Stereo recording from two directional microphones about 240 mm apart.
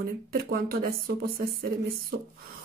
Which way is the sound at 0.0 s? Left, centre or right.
Right.